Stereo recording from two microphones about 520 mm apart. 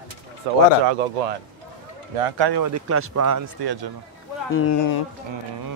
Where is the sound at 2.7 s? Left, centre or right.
Right.